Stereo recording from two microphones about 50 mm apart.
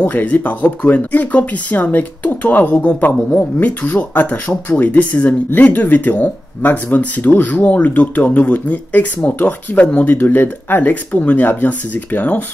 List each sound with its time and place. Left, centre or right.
0.0 s speech: left
0.9 s speech: left